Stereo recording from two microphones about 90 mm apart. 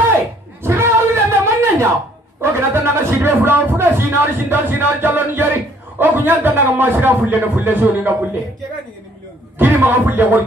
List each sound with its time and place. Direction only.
0.7 s a sound: 30° right (ahead or behind)
2.4 s speech: 25° right (ahead or behind)
9.6 s speech: 20° right (ahead or behind)